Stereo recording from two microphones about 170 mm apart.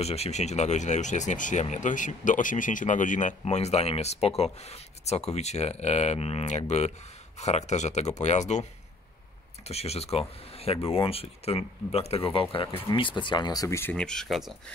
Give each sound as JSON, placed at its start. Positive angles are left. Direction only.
{"t": 0.0, "sound": "speech", "side_deg": 40}
{"t": 9.7, "sound": "speech", "side_deg": 40}